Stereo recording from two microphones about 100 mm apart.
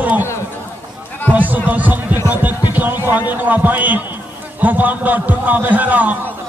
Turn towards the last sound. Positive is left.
turn(degrees=-15)  # may be behind; listen again after turning